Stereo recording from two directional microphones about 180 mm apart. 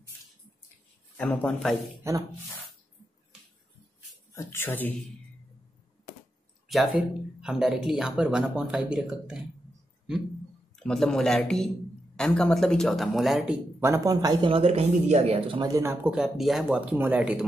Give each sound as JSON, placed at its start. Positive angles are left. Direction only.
{"t": 1.1, "sound": "speech", "side_deg": 5}
{"t": 2.1, "sound": "a man's voice", "side_deg": -15}
{"t": 4.3, "sound": "speech", "side_deg": 15}
{"t": 6.7, "sound": "speech", "side_deg": 0}
{"t": 13.7, "sound": "a man's voice", "side_deg": -15}